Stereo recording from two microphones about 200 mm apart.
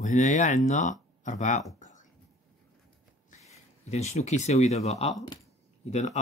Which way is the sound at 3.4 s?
35° left (ahead or behind).